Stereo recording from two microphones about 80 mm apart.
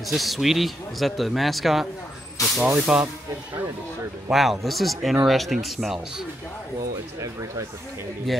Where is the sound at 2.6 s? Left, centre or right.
Centre.